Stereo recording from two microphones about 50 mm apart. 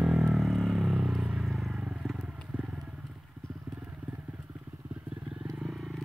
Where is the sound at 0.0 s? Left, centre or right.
Centre.